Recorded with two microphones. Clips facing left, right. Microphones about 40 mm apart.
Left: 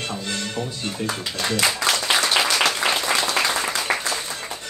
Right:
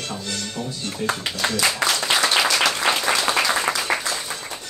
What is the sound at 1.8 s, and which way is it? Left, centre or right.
Applause, right.